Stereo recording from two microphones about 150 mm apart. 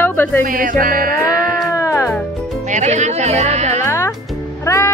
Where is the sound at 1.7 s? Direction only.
20° left (ahead or behind).